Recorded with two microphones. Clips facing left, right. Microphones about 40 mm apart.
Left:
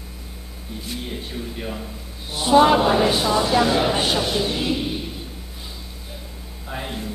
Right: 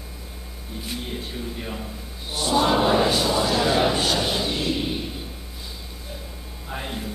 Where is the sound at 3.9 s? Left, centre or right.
Centre.